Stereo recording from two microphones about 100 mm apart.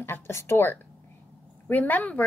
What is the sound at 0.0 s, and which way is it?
A woman's voice, 25° left (ahead or behind).